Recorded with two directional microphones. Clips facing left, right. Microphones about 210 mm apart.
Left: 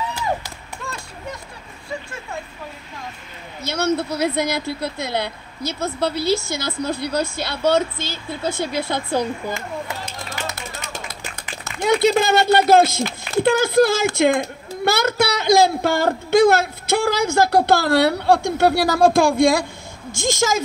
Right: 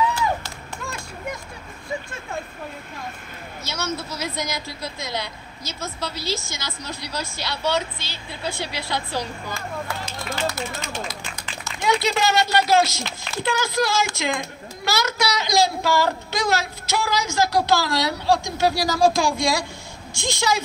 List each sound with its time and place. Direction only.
3.6 s a child's voice: 55° left (ahead or behind)
11.6 s a man's voice: 50° left (ahead or behind)